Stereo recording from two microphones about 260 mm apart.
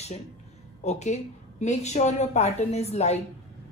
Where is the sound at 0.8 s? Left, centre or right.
Left.